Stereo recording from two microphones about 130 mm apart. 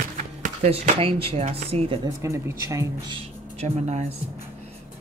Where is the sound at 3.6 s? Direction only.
60° right (ahead or behind).